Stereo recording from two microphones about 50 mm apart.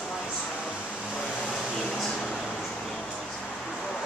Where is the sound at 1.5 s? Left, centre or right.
Centre.